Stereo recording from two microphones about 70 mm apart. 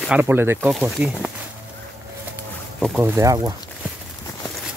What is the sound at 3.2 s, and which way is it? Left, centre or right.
Speech, right.